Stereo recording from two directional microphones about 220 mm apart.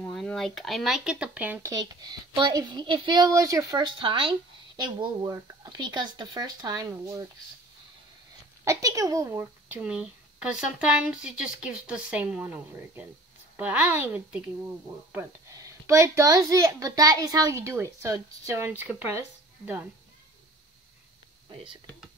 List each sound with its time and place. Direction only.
0.0 s speech: 5° left (ahead or behind); by 7.2 s 15° right (ahead or behind)
8.6 s speech: 15° right (ahead or behind)